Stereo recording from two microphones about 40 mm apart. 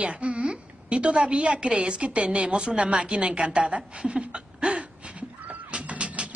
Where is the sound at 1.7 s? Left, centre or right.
Right.